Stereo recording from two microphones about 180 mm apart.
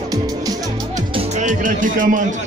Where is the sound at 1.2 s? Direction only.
45° right (ahead or behind).